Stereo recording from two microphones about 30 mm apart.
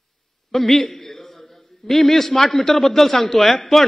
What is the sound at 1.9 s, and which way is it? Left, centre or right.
A man's voice, centre.